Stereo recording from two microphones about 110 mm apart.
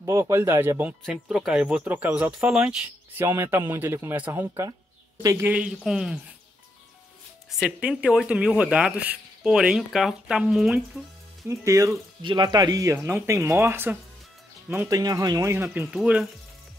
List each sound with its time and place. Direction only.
0.0 s a man's voice: 30° right (ahead or behind)
1.0 s speech: 5° right (ahead or behind)
3.2 s a man's voice: 20° right (ahead or behind)
5.5 s speech: 10° right (ahead or behind)
7.5 s speech: 5° right (ahead or behind)
11.4 s a man's voice: 30° right (ahead or behind)
12.2 s a man's voice: 45° right (ahead or behind); by 13.9 s 20° right (ahead or behind)
14.9 s speech: 35° right (ahead or behind)
15.5 s a man's voice: 20° right (ahead or behind)
15.9 s speech: 10° right (ahead or behind)